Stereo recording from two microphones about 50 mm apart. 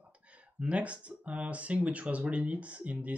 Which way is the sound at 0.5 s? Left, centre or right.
Right.